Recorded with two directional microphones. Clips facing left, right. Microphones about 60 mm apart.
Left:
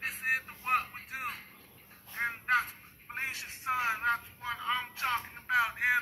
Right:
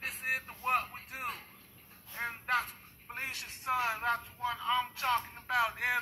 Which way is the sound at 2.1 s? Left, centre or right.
Centre.